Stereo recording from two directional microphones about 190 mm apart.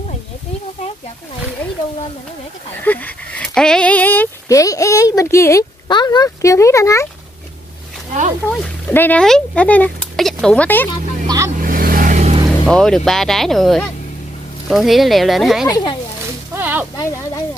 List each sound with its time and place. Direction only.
2.8 s speech: 10° left (ahead or behind)
8.5 s speech: 10° left (ahead or behind)
11.2 s speech: 15° right (ahead or behind)
11.6 s vehicle: 50° right (ahead or behind)
12.6 s speech: 5° left (ahead or behind)
15.6 s speech: 20° left (ahead or behind)
16.5 s whip: 10° right (ahead or behind)
16.9 s speech: 15° left (ahead or behind)